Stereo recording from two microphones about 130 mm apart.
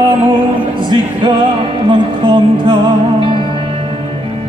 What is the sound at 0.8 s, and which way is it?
Music, 35° right (ahead or behind).